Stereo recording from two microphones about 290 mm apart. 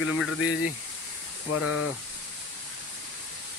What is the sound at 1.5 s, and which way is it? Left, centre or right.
Speech, left.